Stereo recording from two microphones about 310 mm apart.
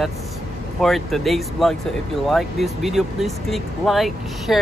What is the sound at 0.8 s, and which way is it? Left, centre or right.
Speech, centre.